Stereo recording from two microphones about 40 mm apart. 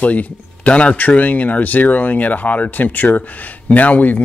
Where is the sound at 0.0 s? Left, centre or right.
Left.